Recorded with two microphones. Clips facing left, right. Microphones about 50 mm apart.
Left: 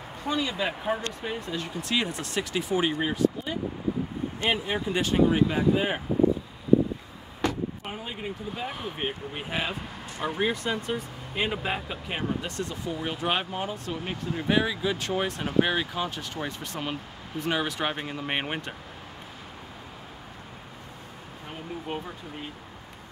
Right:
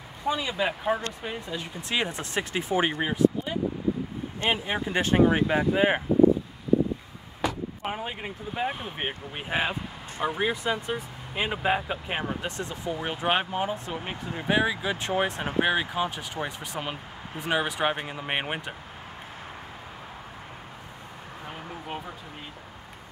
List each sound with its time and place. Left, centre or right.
0.2 s speech: centre
1.8 s speech: right
4.5 s speech: centre
4.9 s speech: right
7.4 s vehicle: centre
7.9 s speech: right; by 18.8 s centre